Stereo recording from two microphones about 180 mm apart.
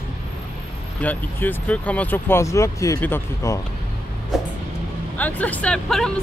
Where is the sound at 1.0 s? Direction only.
10° left (ahead or behind).